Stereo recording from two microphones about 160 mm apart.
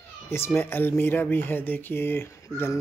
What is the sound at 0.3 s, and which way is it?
Speech, 15° left (ahead or behind).